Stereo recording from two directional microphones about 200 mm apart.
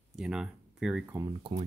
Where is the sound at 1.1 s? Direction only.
20° right (ahead or behind).